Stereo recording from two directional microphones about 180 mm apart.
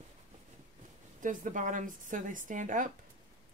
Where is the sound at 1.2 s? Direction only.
45° right (ahead or behind).